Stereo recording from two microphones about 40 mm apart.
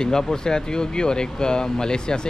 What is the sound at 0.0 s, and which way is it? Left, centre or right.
Speech, centre.